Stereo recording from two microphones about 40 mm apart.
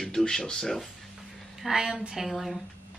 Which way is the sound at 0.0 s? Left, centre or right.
Centre.